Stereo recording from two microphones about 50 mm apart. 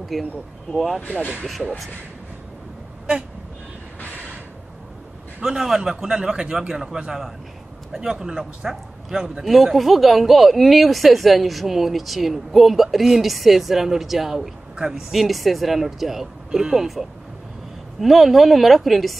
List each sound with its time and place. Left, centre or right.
0.1 s a man's voice: centre
5.4 s a man's voice: centre
18.0 s a man's voice: centre